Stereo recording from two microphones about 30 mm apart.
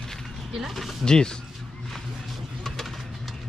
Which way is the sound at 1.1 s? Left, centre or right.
Left.